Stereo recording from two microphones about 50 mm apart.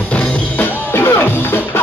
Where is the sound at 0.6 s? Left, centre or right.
Left.